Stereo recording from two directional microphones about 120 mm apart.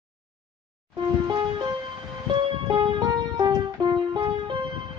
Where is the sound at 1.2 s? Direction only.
35° right (ahead or behind).